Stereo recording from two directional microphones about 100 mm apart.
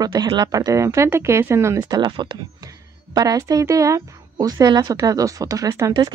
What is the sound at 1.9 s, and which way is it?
Speech, 50° right (ahead or behind).